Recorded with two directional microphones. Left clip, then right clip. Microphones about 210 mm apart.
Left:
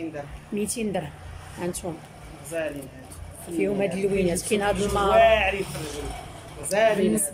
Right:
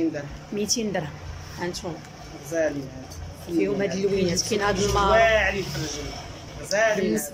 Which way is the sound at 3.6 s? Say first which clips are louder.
Even; 5° left (ahead or behind).